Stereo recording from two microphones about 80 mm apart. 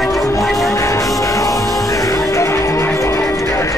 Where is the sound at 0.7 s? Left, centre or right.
Left.